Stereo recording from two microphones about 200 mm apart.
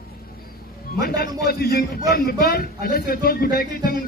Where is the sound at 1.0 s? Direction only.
50° left (ahead or behind).